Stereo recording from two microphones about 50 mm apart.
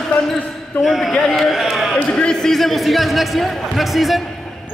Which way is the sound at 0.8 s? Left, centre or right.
Centre.